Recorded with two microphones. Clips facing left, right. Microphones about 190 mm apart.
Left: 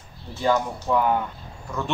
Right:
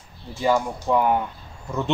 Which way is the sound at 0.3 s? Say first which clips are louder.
Right 1 dB; 10° right (ahead or behind).